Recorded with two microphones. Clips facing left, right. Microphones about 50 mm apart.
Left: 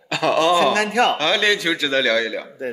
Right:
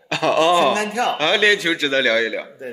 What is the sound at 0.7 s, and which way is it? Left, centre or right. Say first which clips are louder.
Speech: left 2 dB; left.